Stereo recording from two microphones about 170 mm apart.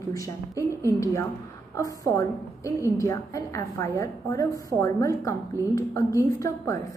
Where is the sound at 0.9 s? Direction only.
20° left (ahead or behind).